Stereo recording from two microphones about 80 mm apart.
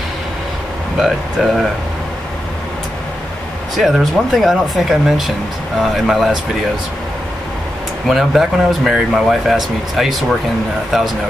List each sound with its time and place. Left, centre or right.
0.9 s speech: centre
3.7 s speech: centre
8.1 s speech: centre